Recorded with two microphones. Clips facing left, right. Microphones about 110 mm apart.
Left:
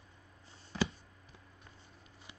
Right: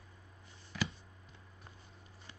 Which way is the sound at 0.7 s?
30° left (ahead or behind).